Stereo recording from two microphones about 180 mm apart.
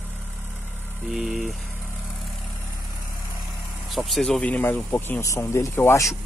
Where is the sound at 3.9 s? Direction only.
Centre (ahead or behind).